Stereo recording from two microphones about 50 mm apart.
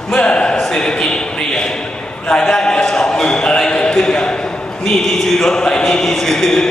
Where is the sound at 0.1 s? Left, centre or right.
Centre.